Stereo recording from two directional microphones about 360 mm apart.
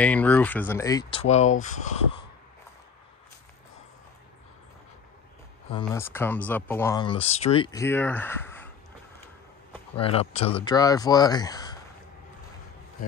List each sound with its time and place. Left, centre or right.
0.0 s speech: centre
5.7 s speech: centre
9.7 s speech: centre